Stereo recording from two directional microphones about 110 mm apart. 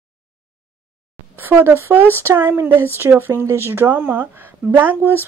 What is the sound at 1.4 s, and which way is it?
Speech, 20° right (ahead or behind).